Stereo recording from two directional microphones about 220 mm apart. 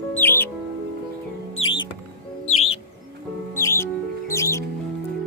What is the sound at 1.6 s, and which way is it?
Music, 65° left (ahead or behind).